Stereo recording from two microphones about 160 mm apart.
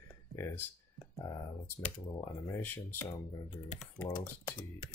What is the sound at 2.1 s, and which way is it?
Speech, 20° left (ahead or behind).